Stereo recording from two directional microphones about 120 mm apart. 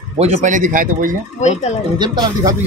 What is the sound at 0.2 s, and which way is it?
Speech, 80° right.